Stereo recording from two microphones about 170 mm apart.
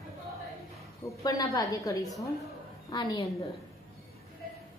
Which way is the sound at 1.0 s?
20° left (ahead or behind).